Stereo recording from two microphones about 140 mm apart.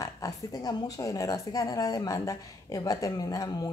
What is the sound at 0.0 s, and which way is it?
Speech, 25° left (ahead or behind).